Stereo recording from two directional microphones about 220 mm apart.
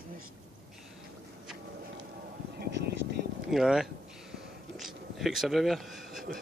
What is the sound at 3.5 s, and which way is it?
Speech, centre (ahead or behind).